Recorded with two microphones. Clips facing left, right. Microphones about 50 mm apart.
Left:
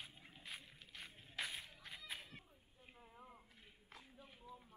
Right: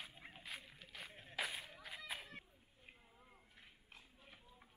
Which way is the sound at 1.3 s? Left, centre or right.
Centre.